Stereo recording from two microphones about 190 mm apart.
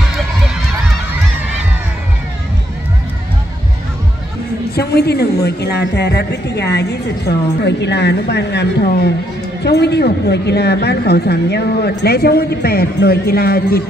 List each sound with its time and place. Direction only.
4.7 s a woman's voice: 60° left (ahead or behind)